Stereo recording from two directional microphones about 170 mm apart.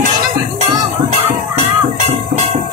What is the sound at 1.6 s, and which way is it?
Music, 40° right (ahead or behind).